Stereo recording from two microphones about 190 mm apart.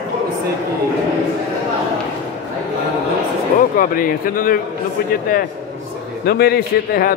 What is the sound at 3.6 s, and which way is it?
Speech, 45° left (ahead or behind).